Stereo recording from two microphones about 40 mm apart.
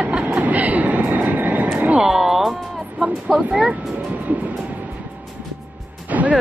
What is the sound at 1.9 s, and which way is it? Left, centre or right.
Speech, centre.